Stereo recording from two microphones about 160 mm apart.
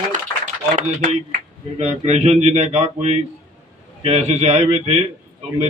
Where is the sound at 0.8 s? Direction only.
45° right (ahead or behind).